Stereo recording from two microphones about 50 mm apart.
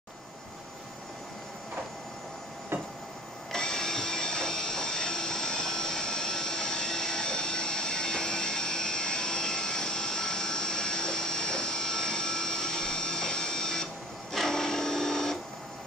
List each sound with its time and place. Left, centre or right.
3.5 s train: centre
14.3 s printer: centre